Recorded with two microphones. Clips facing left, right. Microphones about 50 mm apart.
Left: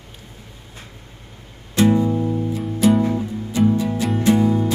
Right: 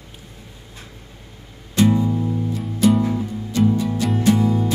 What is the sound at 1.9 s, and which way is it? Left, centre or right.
Music, centre.